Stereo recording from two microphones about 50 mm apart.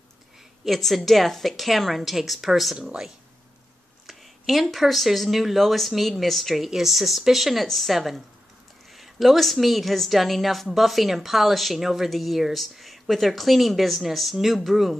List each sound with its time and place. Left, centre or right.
0.7 s a woman's voice: centre
2.8 s speech: centre
4.1 s a sound: centre
4.7 s a woman's voice: centre